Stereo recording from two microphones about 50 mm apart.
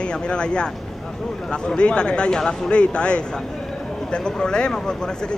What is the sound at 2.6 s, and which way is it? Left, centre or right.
Speech, left.